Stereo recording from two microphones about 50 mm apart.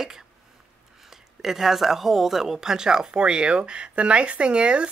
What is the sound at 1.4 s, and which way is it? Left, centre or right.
Speech, centre.